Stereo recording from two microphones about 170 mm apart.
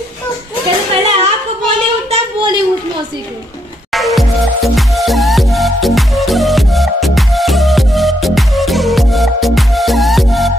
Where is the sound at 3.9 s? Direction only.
Centre (ahead or behind).